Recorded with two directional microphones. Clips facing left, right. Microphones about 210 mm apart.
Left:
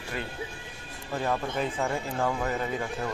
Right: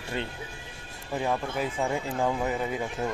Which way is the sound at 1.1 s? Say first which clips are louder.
Even; 10° right (ahead or behind).